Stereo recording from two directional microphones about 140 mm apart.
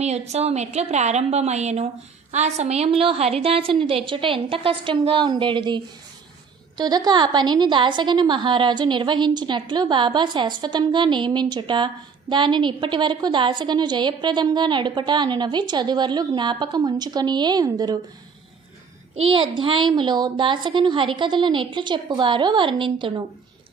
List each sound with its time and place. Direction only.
0.0 s a woman's voice: 50° right (ahead or behind); by 5.8 s 35° right (ahead or behind)
6.8 s a woman's voice: 30° right (ahead or behind)
19.2 s a woman's voice: 35° right (ahead or behind)